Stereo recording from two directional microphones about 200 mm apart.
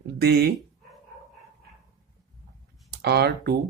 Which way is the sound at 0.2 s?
55° right (ahead or behind).